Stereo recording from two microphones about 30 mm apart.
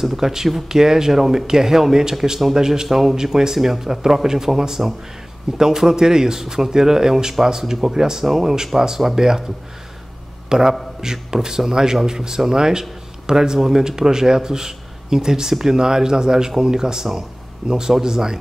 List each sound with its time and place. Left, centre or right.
0.0 s speech: centre
0.7 s speech: centre
2.9 s speech: centre
8.3 s speech: centre
8.7 s speech: centre
10.5 s a man's voice: centre